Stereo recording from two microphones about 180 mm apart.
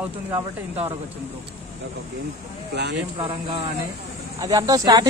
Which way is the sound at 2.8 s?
75° right (ahead or behind).